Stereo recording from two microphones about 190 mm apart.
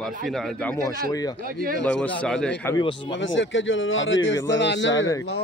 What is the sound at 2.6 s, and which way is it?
Speech, 25° left (ahead or behind).